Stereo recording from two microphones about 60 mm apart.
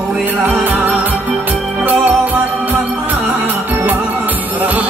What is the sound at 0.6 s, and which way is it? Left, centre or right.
Music, right.